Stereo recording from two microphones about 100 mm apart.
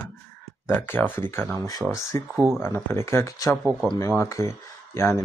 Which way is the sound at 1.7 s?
35° left (ahead or behind).